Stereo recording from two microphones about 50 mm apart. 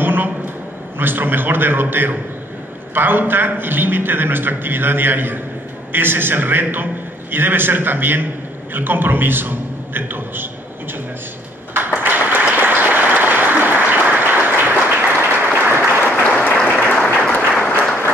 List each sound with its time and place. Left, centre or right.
0.0 s a sound: right
0.9 s a man's voice: right
11.7 s applause: right
16.3 s applause: left